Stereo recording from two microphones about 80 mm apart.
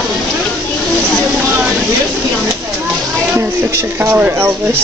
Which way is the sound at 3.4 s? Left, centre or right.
Right.